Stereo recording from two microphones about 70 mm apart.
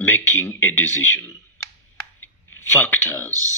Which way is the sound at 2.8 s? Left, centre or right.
Left.